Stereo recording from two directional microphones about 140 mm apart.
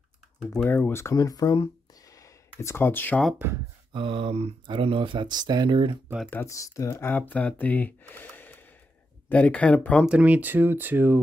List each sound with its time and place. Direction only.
0.7 s speech: 15° left (ahead or behind)
3.9 s speech: 40° right (ahead or behind)
6.3 s speech: 20° left (ahead or behind)
10.0 s speech: 10° right (ahead or behind)